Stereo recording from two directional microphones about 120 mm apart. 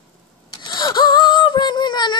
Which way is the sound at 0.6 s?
35° left (ahead or behind).